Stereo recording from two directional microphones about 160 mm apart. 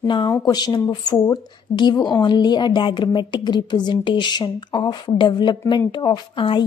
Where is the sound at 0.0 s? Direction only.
30° left (ahead or behind).